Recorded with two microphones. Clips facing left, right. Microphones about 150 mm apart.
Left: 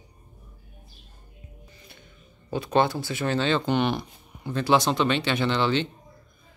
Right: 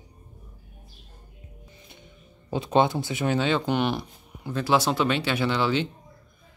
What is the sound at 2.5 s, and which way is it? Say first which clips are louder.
Speech: right 1 dB; 20° right (ahead or behind).